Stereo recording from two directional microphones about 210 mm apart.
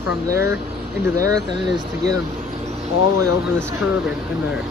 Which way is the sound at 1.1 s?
15° right (ahead or behind).